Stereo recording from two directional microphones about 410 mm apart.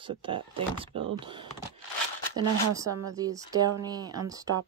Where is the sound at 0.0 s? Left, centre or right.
Centre.